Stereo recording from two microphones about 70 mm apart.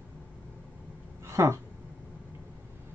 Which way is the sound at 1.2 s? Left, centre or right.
Right.